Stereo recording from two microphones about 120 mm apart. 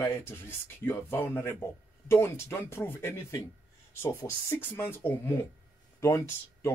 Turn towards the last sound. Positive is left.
turn(degrees=25)  # may be behind; listen again after turning